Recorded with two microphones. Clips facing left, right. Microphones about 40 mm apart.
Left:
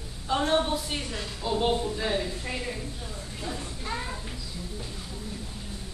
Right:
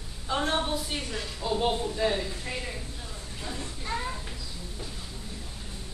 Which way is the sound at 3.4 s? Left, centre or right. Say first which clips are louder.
Left 1 dB; centre.